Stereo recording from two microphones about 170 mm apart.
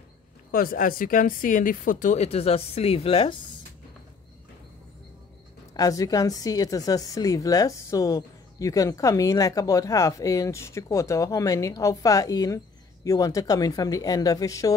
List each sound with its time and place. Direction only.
0.5 s speech: 55° left (ahead or behind); by 3.3 s 35° left (ahead or behind)
5.8 s speech: 20° left (ahead or behind)